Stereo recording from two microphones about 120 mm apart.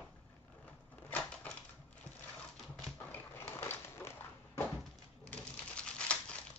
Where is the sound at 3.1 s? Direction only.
20° left (ahead or behind).